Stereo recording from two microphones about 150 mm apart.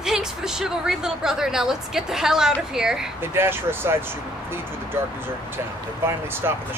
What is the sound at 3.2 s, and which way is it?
Speech, 15° right (ahead or behind).